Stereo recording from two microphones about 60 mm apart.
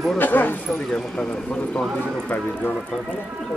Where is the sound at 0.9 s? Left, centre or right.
Centre.